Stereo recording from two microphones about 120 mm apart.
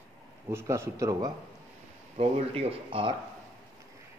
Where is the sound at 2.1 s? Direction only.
55° right (ahead or behind).